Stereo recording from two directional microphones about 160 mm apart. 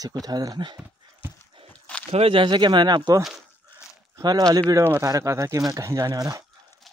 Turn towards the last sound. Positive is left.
turn(degrees=-20)  # may be behind; listen again after turning